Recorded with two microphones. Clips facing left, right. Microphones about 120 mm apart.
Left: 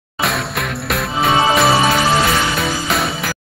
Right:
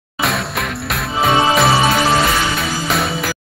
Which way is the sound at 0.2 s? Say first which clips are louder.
Even; centre (ahead or behind).